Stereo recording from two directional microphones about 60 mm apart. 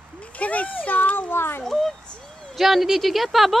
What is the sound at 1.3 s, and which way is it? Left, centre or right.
Speech, left.